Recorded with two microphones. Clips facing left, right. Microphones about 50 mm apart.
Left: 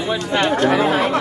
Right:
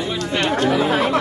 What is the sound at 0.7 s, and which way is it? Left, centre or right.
Speech, centre.